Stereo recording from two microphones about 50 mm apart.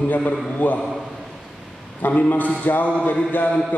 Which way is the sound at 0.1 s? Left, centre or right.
Left.